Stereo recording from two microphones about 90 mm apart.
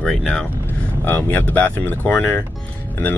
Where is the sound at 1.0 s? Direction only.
20° left (ahead or behind).